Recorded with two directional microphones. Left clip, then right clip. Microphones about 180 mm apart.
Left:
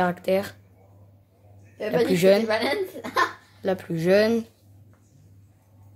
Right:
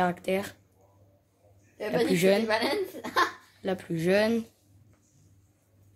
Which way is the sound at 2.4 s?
10° right (ahead or behind).